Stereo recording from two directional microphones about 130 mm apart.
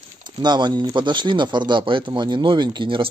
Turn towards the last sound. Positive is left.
turn(degrees=-40)  # may be behind; listen again after turning